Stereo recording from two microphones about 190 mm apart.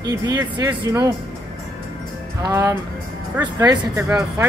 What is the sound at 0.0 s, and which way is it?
Speech, 15° right (ahead or behind).